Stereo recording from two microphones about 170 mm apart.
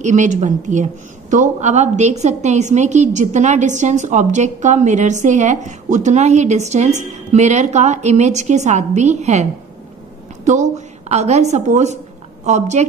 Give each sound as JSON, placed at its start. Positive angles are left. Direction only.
{"t": 0.0, "sound": "a woman's voice", "side_deg": -45}